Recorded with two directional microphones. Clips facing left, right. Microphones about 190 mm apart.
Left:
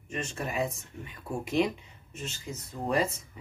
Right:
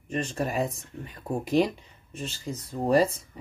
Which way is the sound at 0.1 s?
35° right (ahead or behind).